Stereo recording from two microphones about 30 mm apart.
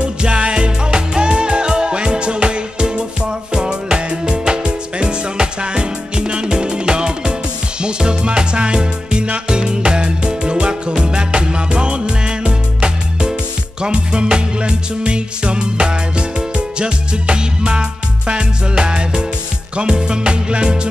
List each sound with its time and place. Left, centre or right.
0.0 s music: right